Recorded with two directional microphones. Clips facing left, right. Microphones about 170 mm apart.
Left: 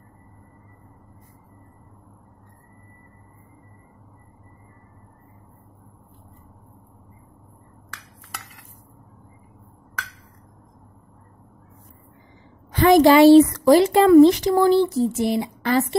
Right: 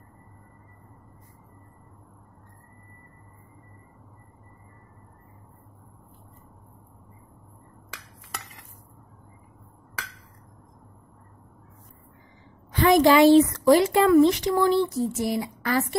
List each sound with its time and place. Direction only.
12.8 s speech: 35° left (ahead or behind)